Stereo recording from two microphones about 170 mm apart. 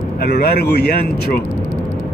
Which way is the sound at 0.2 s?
75° left (ahead or behind).